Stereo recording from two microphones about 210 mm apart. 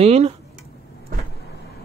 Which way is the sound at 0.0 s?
30° right (ahead or behind).